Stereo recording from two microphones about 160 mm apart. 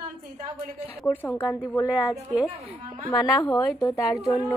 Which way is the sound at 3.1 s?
20° left (ahead or behind).